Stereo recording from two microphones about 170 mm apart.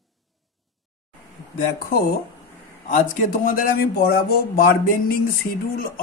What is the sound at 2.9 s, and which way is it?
Speech, 55° left (ahead or behind).